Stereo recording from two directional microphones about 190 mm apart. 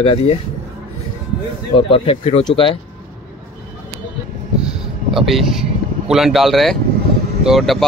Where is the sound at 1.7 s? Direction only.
30° left (ahead or behind).